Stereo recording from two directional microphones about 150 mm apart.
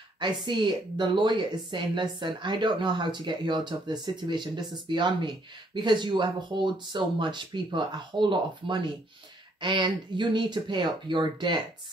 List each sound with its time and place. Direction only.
0.2 s speech: 30° right (ahead or behind)